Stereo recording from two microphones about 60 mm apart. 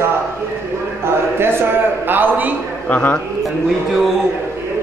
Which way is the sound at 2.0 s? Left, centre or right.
Right.